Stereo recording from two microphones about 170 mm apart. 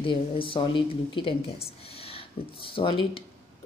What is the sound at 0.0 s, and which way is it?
Speech, 30° left (ahead or behind).